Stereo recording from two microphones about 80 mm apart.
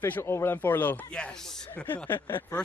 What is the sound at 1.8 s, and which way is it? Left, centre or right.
Speech, centre.